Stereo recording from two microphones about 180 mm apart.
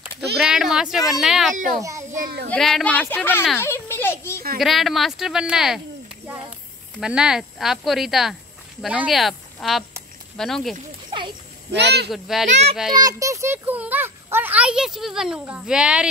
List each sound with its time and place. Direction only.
0.4 s a sound: 5° right (ahead or behind)
1.2 s speech: centre (ahead or behind)
1.5 s a child's voice: 45° right (ahead or behind)
1.8 s a child's voice: 15° right (ahead or behind)
2.2 s speech: 65° right (ahead or behind)
2.5 s speech: 5° left (ahead or behind)
3.5 s a sound: 15° left (ahead or behind)
4.6 s speech: centre (ahead or behind)
7.0 s speech: 5° right (ahead or behind)
11.1 s a sound: 25° right (ahead or behind)
11.7 s speech: 70° right (ahead or behind)
12.1 s speech: centre (ahead or behind)
12.4 s a child's voice: 35° right (ahead or behind)
12.9 s a child's voice: 20° right (ahead or behind)